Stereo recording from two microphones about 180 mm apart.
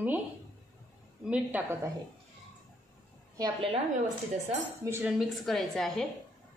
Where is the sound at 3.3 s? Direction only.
20° right (ahead or behind).